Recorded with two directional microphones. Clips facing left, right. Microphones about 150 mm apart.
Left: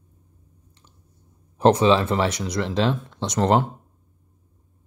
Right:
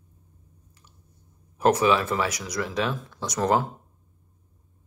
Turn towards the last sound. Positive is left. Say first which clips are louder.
# left 3 dB
turn(degrees=25)  # may be behind; listen again after turning